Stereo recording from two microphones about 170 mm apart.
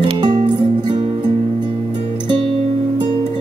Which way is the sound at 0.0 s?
25° right (ahead or behind).